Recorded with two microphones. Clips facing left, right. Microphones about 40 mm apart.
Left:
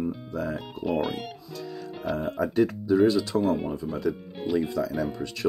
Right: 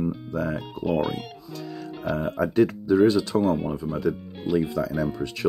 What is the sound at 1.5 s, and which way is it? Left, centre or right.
Music, right.